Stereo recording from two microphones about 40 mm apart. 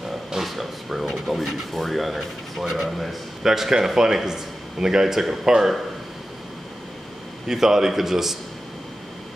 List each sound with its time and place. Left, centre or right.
0.3 s a man's voice: centre
7.4 s a man's voice: centre